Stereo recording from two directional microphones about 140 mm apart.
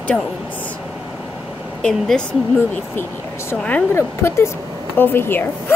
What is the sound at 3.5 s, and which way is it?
A woman's voice, 15° left (ahead or behind).